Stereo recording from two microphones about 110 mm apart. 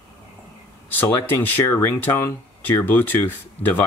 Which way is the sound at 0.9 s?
20° left (ahead or behind).